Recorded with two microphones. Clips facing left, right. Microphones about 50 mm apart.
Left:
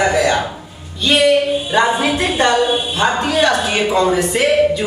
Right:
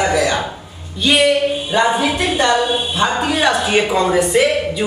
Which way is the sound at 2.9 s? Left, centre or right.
Centre.